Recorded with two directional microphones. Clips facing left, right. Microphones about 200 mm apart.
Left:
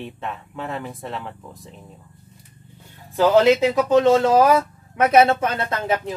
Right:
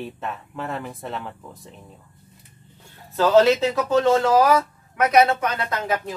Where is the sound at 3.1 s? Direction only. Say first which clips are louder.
Left 1 dB; 15° left (ahead or behind).